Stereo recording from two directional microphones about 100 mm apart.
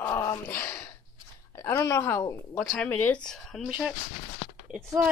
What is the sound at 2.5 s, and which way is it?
Speech, 10° left (ahead or behind).